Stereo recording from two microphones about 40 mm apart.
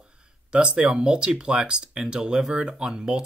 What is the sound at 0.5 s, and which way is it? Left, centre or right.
Speech, right.